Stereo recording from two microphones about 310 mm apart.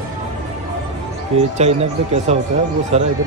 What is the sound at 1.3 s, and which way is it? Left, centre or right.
Speech, centre.